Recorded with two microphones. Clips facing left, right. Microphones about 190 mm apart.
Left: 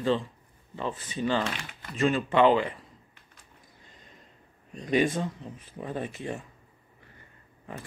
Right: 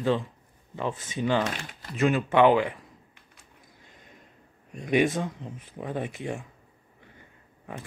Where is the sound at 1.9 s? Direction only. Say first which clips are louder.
Right 2 dB; 10° right (ahead or behind).